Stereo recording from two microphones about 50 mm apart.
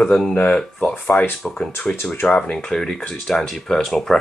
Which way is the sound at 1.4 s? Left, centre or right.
Centre.